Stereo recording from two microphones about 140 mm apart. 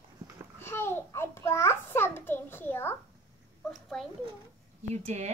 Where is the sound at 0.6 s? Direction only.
15° left (ahead or behind).